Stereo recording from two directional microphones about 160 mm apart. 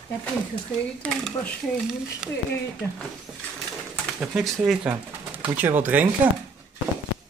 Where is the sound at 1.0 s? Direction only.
5° left (ahead or behind).